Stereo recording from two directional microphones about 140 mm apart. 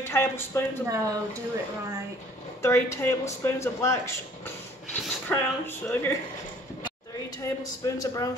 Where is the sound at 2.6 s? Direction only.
20° left (ahead or behind).